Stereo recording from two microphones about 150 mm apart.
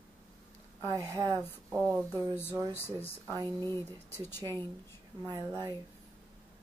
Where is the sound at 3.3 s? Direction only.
25° right (ahead or behind).